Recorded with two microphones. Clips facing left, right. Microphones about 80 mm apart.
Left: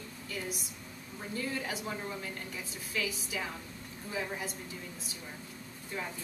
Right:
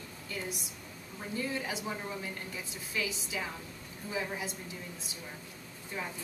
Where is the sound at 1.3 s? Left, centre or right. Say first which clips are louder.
Right 1 dB; centre.